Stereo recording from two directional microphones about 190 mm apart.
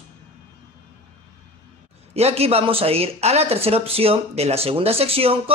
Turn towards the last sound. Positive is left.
turn(degrees=-30)  # may be behind; listen again after turning